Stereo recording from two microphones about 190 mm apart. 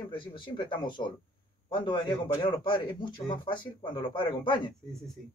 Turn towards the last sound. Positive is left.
turn(degrees=25)  # may be behind; listen again after turning